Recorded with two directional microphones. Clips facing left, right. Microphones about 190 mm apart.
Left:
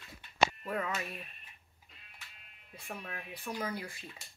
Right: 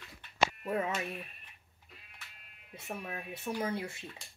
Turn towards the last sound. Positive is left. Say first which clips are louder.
# right 3 dB
turn(degrees=-25)  # may be behind; listen again after turning